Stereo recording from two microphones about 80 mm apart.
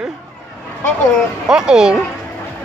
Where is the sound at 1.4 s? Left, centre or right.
Centre.